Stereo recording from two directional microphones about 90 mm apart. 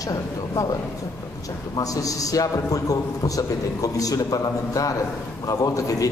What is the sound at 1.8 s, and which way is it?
A man's voice, 40° left (ahead or behind).